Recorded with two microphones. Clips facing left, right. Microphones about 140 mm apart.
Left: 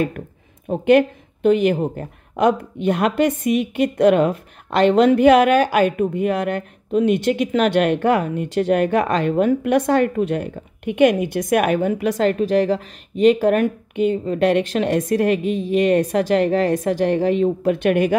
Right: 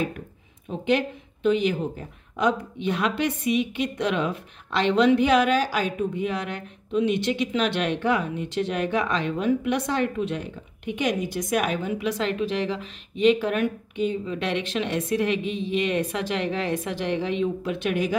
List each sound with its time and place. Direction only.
0.7 s speech: 55° left (ahead or behind)